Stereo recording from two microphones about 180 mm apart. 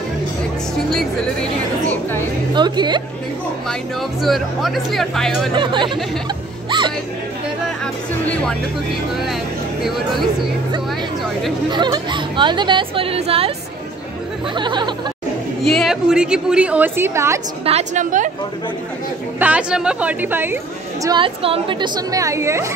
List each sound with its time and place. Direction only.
0.9 s a woman's voice: 5° left (ahead or behind)
2.5 s speech: 25° right (ahead or behind)
4.2 s speech: centre (ahead or behind)
5.5 s speech: 25° right (ahead or behind)
7.8 s speech: 5° left (ahead or behind)
9.8 s speech: centre (ahead or behind)
11.7 s speech: 25° right (ahead or behind)
14.5 s speech: 25° right (ahead or behind)
15.6 s a woman's voice: centre (ahead or behind); by 17.4 s 15° right (ahead or behind)
17.6 s a woman's voice: 40° right (ahead or behind)
19.4 s a woman's voice: 5° right (ahead or behind)
21.0 s speech: 25° right (ahead or behind)